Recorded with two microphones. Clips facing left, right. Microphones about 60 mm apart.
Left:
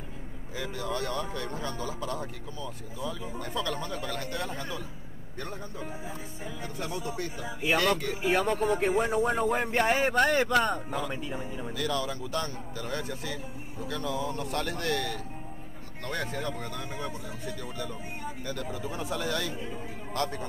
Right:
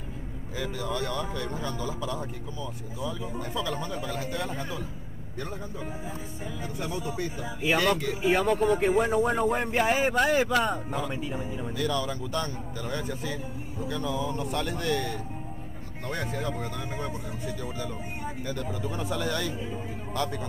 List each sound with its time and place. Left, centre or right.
0.9 s speech: left
1.4 s speech: centre
16.1 s speech: centre
20.1 s a sound: centre